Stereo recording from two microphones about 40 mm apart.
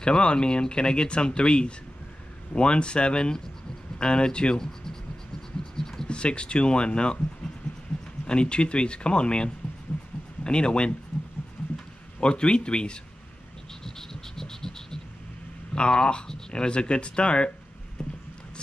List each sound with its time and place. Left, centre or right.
0.0 s speech: left
5.8 s a sound: centre
6.0 s speech: left
8.3 s speech: left
11.6 s heart sounds: centre
12.2 s speech: left
13.8 s frog: centre
15.7 s speech: left